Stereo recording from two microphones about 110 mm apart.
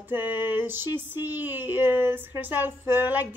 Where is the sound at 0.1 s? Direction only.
20° right (ahead or behind).